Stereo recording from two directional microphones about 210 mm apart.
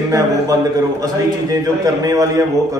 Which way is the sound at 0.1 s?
15° right (ahead or behind).